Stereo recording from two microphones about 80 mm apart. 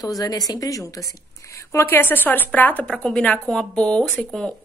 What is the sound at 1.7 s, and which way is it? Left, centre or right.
Speech, left.